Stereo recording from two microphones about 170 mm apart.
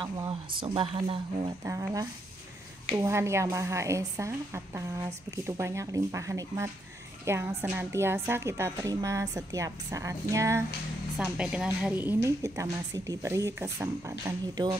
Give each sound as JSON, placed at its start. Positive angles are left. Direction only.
{"t": 0.0, "sound": "speech", "side_deg": -30}
{"t": 1.6, "sound": "a woman's voice", "side_deg": -20}
{"t": 11.1, "sound": "a woman's voice", "side_deg": -5}